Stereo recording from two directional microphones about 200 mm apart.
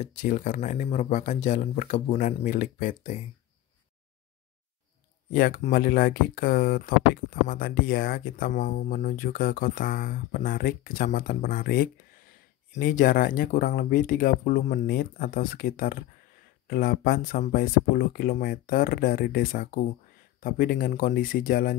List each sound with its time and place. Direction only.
0.0 s speech: 40° left (ahead or behind)
5.6 s speech: 45° left (ahead or behind)